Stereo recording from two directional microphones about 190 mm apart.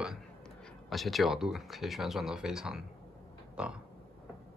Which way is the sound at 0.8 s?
Centre (ahead or behind).